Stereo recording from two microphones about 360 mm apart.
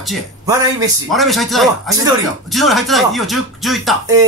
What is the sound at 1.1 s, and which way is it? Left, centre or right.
Speech, centre.